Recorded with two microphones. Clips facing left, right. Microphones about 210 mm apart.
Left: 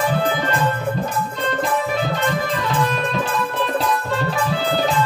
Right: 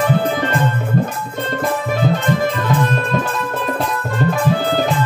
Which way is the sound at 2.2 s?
50° right (ahead or behind).